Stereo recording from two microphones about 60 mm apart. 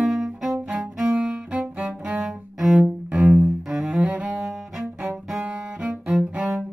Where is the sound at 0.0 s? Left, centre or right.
Centre.